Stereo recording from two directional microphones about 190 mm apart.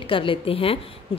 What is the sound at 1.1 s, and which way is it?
Owl, 30° left (ahead or behind).